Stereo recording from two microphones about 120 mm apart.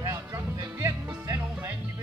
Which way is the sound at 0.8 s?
25° right (ahead or behind).